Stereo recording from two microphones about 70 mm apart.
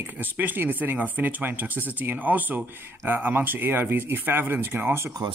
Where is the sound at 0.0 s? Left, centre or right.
Right.